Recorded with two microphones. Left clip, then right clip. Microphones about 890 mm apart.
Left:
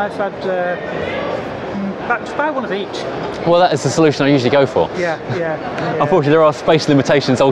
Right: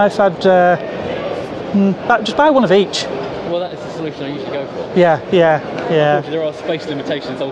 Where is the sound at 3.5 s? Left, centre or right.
Left.